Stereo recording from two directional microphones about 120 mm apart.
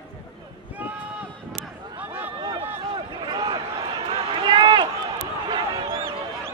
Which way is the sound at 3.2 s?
35° right (ahead or behind).